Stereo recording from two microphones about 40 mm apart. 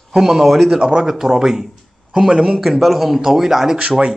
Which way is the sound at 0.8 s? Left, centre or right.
Right.